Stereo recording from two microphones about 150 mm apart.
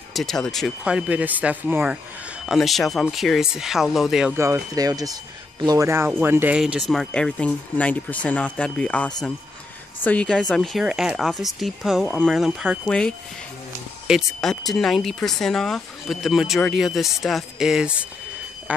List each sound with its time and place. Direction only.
0.1 s speech: centre (ahead or behind)
2.4 s speech: centre (ahead or behind)
4.4 s speech: 20° right (ahead or behind)
6.9 s speech: 5° left (ahead or behind)